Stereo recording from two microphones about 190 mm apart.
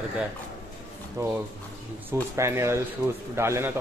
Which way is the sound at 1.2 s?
15° right (ahead or behind).